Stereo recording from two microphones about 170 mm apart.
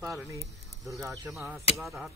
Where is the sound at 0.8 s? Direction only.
Centre (ahead or behind).